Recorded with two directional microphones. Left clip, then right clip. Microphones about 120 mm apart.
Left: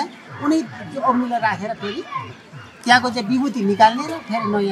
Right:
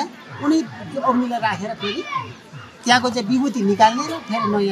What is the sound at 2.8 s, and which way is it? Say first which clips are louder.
A man's voice: left 1 dB; 5° right (ahead or behind).